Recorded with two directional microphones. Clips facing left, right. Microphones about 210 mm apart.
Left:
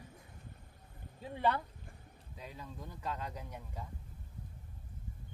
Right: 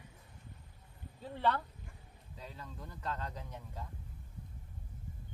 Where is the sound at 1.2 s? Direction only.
10° left (ahead or behind).